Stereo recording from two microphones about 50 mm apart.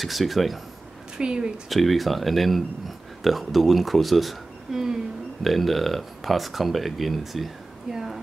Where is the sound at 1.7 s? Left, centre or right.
Centre.